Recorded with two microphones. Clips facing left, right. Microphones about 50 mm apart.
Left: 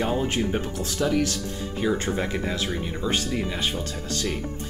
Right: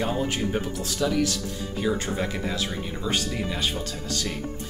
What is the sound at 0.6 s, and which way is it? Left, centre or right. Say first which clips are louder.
Speech: even; left.